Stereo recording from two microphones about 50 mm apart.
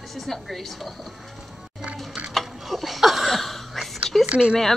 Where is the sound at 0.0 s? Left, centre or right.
Centre.